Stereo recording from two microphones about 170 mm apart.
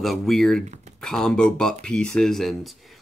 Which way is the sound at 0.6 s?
40° right (ahead or behind).